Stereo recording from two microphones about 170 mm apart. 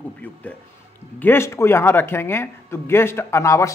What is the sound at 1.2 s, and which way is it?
Speech, 15° left (ahead or behind).